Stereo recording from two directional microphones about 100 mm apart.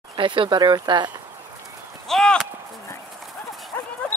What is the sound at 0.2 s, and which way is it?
Speech, 55° right (ahead or behind).